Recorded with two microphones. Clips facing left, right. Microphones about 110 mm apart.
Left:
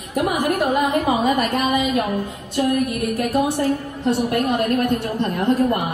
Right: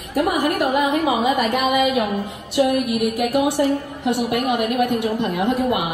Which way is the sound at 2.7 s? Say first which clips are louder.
Right 1 dB; 15° right (ahead or behind).